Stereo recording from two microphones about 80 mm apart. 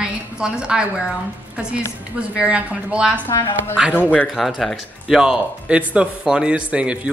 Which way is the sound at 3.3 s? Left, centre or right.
Left.